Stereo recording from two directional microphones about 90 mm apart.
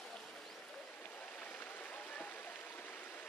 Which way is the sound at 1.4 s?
15° left (ahead or behind).